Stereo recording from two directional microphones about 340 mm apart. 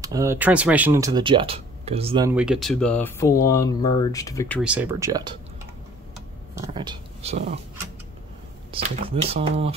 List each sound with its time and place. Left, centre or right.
0.0 s speech: centre
6.5 s speech: centre
8.7 s speech: centre